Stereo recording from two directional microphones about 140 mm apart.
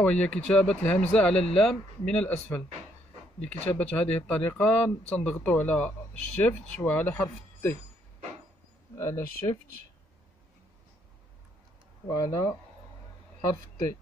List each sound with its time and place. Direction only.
0.0 s speech: 5° left (ahead or behind)
3.4 s speech: 10° left (ahead or behind)
8.9 s speech: 20° left (ahead or behind)
12.1 s speech: 25° left (ahead or behind)